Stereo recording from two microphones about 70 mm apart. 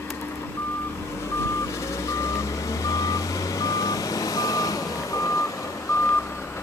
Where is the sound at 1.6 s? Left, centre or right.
Left.